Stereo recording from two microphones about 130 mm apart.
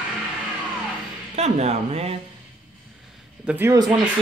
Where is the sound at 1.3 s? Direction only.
55° right (ahead or behind).